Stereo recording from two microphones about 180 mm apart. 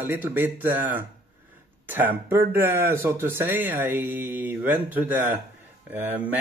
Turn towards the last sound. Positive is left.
turn(degrees=-10)  # may be behind; listen again after turning